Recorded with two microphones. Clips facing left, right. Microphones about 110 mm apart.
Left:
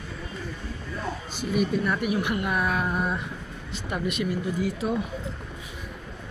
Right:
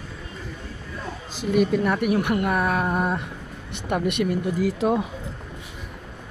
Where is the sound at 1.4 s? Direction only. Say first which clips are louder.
Right 5 dB; 90° right; by 3.2 s 50° right (ahead or behind).